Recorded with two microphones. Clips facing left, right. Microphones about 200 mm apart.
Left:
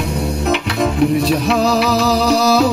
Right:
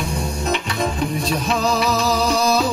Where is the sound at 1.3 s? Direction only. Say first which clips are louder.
Left 6 dB; 65° left (ahead or behind).